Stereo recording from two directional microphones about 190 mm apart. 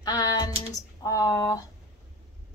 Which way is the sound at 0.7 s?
20° left (ahead or behind).